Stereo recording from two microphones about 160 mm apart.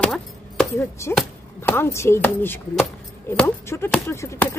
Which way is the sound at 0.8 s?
15° left (ahead or behind).